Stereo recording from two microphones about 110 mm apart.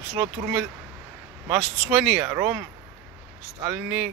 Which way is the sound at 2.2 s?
20° right (ahead or behind).